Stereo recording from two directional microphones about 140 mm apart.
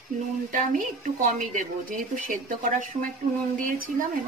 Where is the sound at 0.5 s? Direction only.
70° right (ahead or behind).